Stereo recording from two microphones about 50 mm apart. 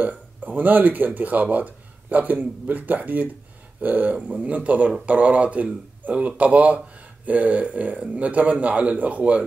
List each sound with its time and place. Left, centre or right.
0.0 s speech: right